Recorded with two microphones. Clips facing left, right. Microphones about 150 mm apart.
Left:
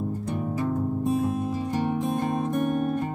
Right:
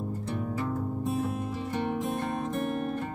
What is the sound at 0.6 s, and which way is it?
Music, 15° left (ahead or behind).